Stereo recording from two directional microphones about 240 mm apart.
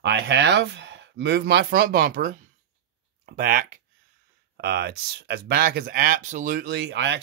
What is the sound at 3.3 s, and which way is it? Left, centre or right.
Speech, right.